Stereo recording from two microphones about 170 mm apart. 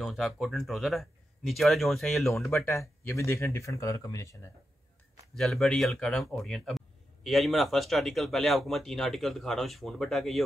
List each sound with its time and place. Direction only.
0.0 s speech: centre (ahead or behind)
2.5 s speech: 15° left (ahead or behind)
5.3 s speech: centre (ahead or behind)